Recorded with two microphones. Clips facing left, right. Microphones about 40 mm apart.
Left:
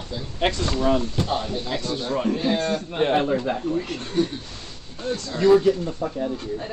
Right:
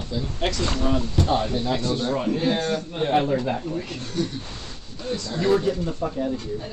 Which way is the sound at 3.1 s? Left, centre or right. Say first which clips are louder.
Right 2 dB; centre.